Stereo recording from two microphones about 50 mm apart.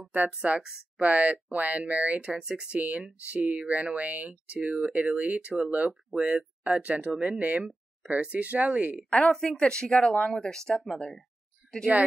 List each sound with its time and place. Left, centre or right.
0.0 s speech: right
2.3 s speech: centre
2.8 s speech: right
6.1 s speech: centre
9.3 s speech: centre